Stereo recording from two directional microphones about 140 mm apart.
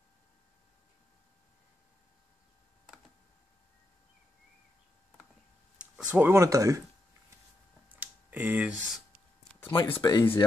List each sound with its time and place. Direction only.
5.8 s speech: 10° right (ahead or behind)
7.9 s a sound: 10° right (ahead or behind)
9.6 s speech: 15° left (ahead or behind)